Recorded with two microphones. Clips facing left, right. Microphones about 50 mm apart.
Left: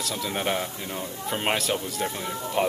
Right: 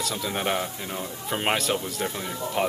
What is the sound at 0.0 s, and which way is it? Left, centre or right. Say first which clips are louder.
Speech: even; centre.